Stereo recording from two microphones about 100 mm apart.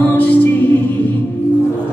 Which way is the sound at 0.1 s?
15° left (ahead or behind).